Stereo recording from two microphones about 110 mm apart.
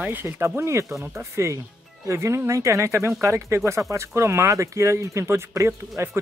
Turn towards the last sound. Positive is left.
turn(degrees=-25)  # may be behind; listen again after turning